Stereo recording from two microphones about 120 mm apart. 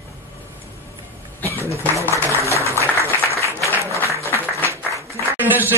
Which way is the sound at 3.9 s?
25° left (ahead or behind).